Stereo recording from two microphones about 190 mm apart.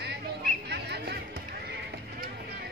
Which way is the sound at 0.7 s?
60° right (ahead or behind).